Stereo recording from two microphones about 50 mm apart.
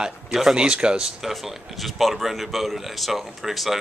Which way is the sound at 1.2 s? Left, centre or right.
Centre.